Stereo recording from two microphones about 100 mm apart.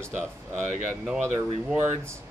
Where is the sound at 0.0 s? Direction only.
20° right (ahead or behind).